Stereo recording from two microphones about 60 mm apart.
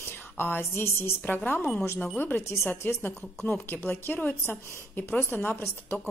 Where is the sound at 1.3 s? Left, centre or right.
Left.